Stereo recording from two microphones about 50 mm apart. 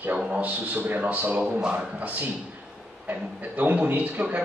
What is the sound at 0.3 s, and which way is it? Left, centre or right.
A man's voice, right.